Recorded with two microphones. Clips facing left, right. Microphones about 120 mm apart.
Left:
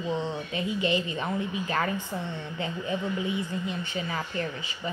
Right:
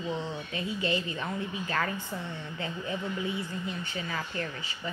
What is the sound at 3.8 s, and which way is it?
A woman's voice, 20° left (ahead or behind).